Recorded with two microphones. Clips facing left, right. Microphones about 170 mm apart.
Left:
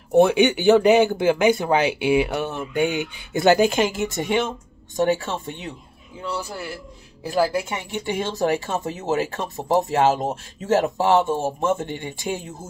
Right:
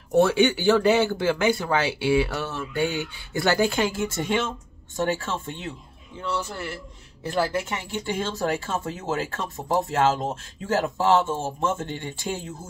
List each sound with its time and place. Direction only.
0.1 s speech: 20° left (ahead or behind)